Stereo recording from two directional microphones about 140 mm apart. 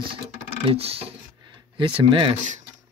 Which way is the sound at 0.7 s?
45° right (ahead or behind).